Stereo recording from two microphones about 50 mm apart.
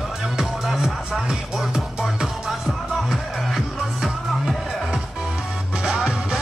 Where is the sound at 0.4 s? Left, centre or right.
Centre.